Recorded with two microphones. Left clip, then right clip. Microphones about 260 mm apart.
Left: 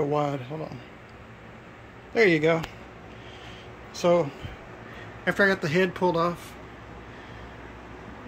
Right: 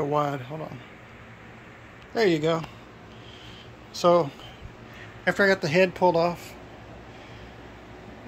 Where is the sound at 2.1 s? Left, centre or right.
Centre.